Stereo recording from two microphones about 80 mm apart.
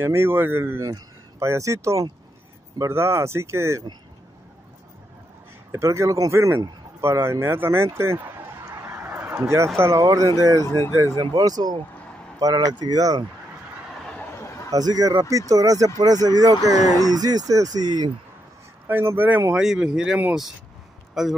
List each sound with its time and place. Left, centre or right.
0.0 s speech: right
5.7 s speech: right
7.0 s speech: right
8.8 s a sound: right
10.1 s speech: right
11.1 s speech: right
14.3 s a sound: left
14.7 s speech: right
18.9 s speech: right
19.5 s speech: centre